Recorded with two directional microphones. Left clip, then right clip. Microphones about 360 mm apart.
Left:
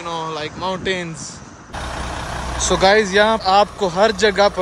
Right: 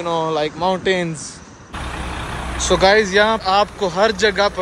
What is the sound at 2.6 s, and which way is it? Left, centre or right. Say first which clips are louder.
Speech: right 1 dB; centre.